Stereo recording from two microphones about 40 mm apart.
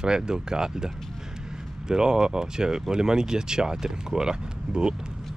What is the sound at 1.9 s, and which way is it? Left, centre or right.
Speech, centre.